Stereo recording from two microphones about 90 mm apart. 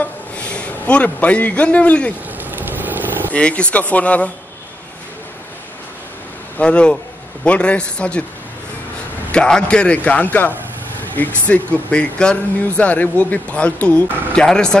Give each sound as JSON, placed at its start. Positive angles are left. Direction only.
{"t": 0.0, "sound": "a sound", "side_deg": 10}
{"t": 2.5, "sound": "vehicle", "side_deg": -20}
{"t": 3.3, "sound": "speech", "side_deg": 15}
{"t": 6.6, "sound": "speech", "side_deg": 10}
{"t": 9.3, "sound": "speech", "side_deg": 10}